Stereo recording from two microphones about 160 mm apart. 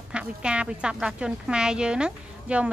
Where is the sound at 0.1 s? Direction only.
5° right (ahead or behind).